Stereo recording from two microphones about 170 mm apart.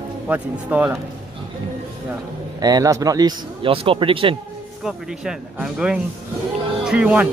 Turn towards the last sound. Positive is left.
turn(degrees=-5)  # may be behind; listen again after turning